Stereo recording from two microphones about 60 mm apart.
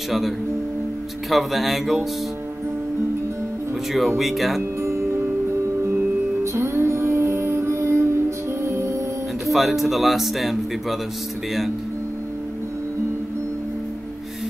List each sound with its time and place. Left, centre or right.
1.3 s speech: centre
4.2 s speech: centre
4.8 s music: right
6.4 s music: right
9.5 s speech: centre